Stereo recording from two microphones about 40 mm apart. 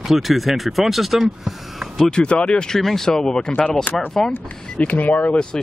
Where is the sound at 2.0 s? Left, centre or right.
Left.